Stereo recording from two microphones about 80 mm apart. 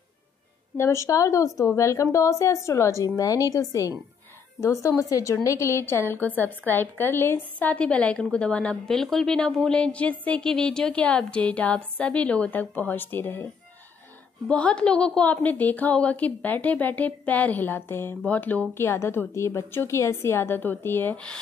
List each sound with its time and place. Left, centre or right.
0.7 s a woman's voice: left
7.5 s a woman's voice: centre
14.5 s a woman's voice: centre
18.9 s a woman's voice: left